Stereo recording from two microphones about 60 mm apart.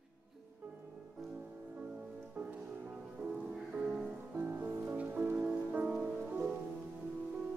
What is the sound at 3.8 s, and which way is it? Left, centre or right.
Music, right.